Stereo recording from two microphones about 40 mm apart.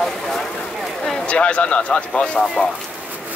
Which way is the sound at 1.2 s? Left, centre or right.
Left.